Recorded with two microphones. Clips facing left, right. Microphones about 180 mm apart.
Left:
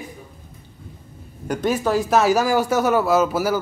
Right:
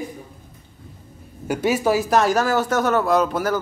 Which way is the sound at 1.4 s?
5° right (ahead or behind).